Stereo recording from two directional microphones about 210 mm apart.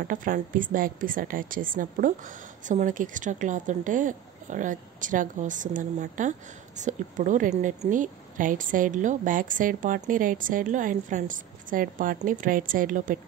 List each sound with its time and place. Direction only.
0.0 s a woman's voice: 40° right (ahead or behind)